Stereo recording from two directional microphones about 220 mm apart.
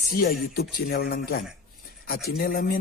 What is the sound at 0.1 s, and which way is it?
A man's voice, 40° left (ahead or behind).